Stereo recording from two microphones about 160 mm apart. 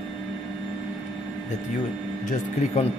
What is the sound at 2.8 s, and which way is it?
Speech, 40° left (ahead or behind).